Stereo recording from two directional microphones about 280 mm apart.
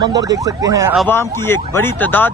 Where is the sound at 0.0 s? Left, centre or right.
Centre.